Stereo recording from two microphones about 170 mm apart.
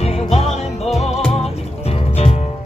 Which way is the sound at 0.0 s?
35° left (ahead or behind).